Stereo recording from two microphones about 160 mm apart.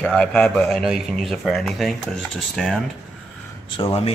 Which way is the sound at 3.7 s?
35° left (ahead or behind).